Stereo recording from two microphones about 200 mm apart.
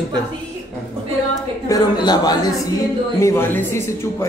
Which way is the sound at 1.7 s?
20° left (ahead or behind).